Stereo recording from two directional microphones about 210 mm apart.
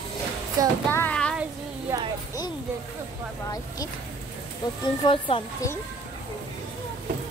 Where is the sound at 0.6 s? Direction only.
15° right (ahead or behind).